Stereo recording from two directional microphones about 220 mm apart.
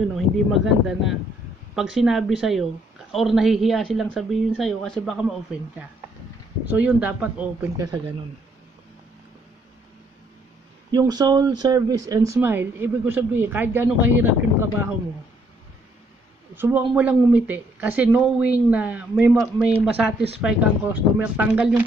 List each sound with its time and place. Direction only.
0.1 s speech: centre (ahead or behind)
10.9 s speech: 15° right (ahead or behind)
16.5 s speech: 10° right (ahead or behind)